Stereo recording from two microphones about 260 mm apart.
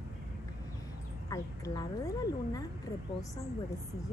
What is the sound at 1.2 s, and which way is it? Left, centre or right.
Speech, centre.